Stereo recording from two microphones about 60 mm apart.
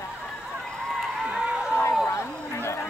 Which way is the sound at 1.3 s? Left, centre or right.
Centre.